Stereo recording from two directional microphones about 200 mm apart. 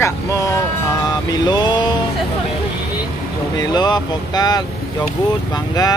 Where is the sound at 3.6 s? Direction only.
20° left (ahead or behind).